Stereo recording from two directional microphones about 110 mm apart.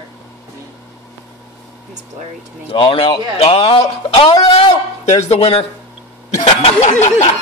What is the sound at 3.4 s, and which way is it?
Speech, 65° left (ahead or behind).